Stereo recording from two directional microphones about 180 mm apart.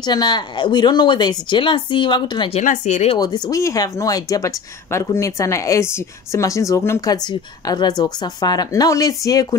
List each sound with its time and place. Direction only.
0.0 s speech: 25° left (ahead or behind)
2.6 s speech: 45° left (ahead or behind)
3.2 s speech: 20° left (ahead or behind)